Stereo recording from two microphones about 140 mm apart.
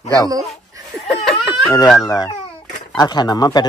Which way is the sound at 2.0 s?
25° left (ahead or behind).